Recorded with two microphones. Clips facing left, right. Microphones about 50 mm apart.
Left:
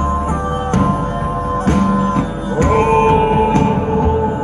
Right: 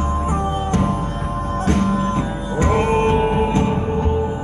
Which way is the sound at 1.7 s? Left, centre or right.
Centre.